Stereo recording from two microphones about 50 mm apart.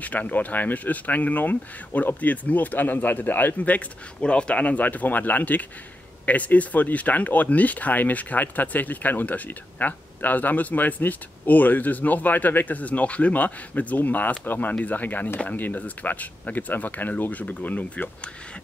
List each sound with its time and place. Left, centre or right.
0.0 s speech: left